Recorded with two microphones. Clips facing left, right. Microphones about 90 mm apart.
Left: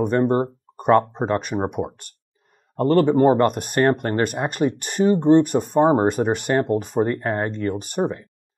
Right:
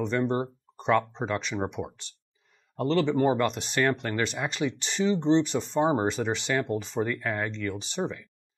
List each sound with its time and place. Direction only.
0.0 s speech: 50° left (ahead or behind)